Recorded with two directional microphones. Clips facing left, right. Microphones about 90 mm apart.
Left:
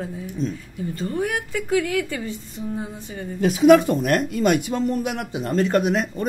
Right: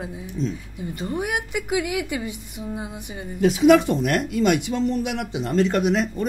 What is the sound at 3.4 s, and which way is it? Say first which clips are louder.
Speech: left 1 dB; 45° left (ahead or behind).